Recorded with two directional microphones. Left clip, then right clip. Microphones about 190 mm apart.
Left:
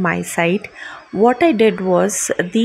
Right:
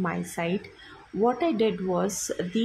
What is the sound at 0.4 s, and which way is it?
Speech, 30° left (ahead or behind).